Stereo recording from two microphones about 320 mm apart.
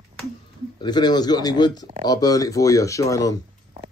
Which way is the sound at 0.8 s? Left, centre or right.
Centre.